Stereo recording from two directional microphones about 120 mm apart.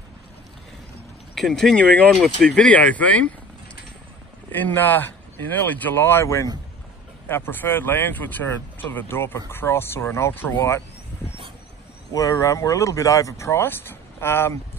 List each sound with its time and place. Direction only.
1.3 s speech: centre (ahead or behind)
4.5 s speech: 15° left (ahead or behind)
12.1 s speech: 25° left (ahead or behind)